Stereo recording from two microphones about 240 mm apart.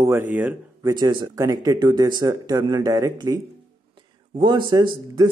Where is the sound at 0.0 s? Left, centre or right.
Centre.